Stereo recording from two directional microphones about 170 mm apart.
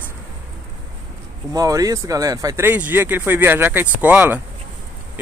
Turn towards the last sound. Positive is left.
turn(degrees=-10)  # may be behind; listen again after turning